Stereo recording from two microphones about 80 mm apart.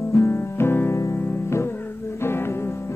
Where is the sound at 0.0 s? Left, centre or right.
Left.